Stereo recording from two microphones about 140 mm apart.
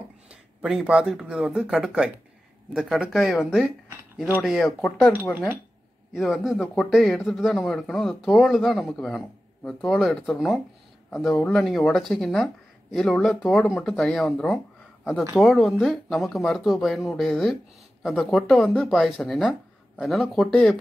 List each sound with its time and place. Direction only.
0.3 s speech: 5° right (ahead or behind)
6.1 s speech: centre (ahead or behind)